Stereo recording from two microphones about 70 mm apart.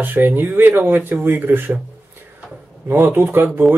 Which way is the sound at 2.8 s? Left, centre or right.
Right.